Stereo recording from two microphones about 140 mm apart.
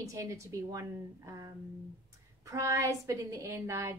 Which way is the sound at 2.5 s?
20° right (ahead or behind).